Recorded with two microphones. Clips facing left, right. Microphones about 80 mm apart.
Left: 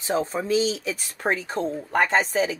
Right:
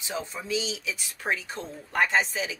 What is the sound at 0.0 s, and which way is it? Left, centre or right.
Speech, left.